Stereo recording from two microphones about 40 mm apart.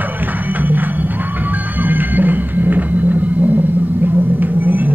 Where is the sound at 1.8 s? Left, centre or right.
Right.